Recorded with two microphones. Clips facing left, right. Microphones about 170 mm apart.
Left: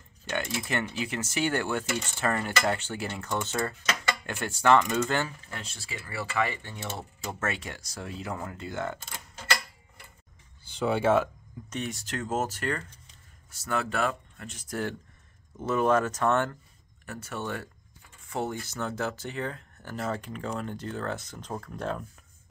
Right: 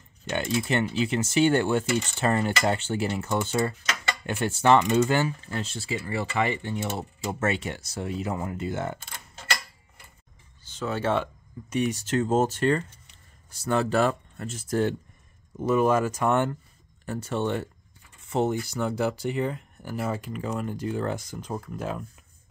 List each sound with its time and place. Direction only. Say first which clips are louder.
0.3 s speech: right 5 dB; 25° right (ahead or behind)
4.5 s speech: right 2 dB; 25° right (ahead or behind)
5.5 s speech: right 9 dB; 30° right (ahead or behind); by 7.3 s 10° right (ahead or behind)
7.3 s speech: right 6 dB; 25° right (ahead or behind)
10.6 s speech: left 3 dB; 10° left (ahead or behind)
11.7 s speech: right 9 dB; 15° right (ahead or behind); by 14.6 s 40° right (ahead or behind)
14.7 s speech: right 7 dB; 25° right (ahead or behind)
15.5 s speech: right 3 dB; 10° right (ahead or behind)
17.0 s speech: right 8 dB; 30° right (ahead or behind)
18.3 s rub: right 7 dB; 25° right (ahead or behind)
18.8 s speech: right 3 dB; 15° right (ahead or behind)